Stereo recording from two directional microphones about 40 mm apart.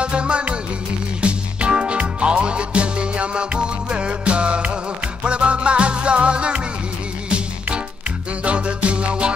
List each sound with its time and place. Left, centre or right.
0.0 s music: right